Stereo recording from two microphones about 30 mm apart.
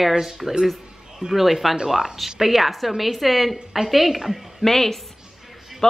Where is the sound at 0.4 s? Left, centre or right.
Centre.